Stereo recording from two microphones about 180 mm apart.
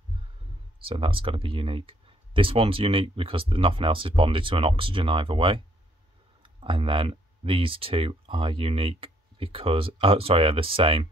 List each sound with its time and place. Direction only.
0.7 s speech: 30° right (ahead or behind)